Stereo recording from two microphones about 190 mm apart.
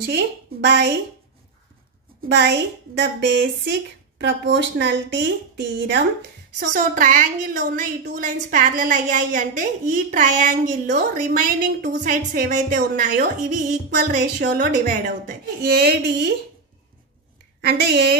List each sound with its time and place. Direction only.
0.7 s speech: 65° right (ahead or behind)
2.2 s speech: 65° right (ahead or behind)
6.7 s a woman's voice: 45° right (ahead or behind)
15.6 s speech: 60° right (ahead or behind)
17.6 s speech: 60° right (ahead or behind)